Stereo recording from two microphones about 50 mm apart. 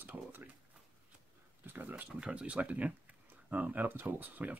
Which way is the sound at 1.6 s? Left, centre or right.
Right.